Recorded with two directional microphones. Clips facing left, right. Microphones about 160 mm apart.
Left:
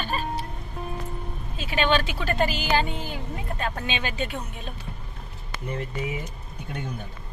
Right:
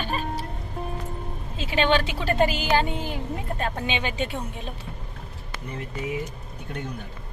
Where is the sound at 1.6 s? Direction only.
25° right (ahead or behind).